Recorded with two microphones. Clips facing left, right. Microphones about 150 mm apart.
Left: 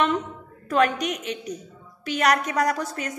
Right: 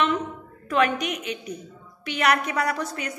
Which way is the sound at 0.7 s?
40° left (ahead or behind).